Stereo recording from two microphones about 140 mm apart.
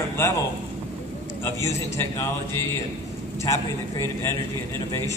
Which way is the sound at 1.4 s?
20° left (ahead or behind).